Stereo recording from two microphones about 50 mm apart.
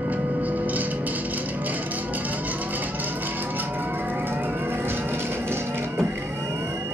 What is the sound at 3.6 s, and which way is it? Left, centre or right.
Vehicle, right.